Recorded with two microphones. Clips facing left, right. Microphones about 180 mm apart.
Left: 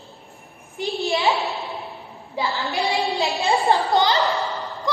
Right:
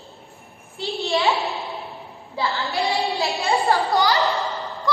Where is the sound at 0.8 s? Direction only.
15° left (ahead or behind).